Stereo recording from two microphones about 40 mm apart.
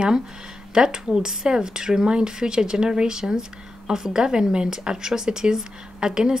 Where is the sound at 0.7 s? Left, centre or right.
Centre.